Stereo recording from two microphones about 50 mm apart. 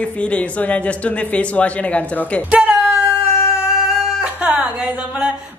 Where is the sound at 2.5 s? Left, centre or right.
Right.